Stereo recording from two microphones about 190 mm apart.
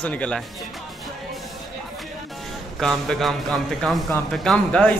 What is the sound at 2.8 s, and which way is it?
Speech, centre (ahead or behind).